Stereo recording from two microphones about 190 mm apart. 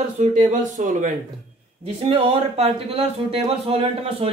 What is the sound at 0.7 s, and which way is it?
Speech, 40° right (ahead or behind).